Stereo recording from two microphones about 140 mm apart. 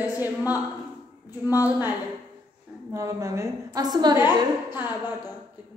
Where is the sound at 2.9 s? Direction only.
20° right (ahead or behind).